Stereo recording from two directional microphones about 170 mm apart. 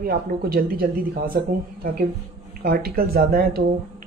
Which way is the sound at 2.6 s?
60° right (ahead or behind).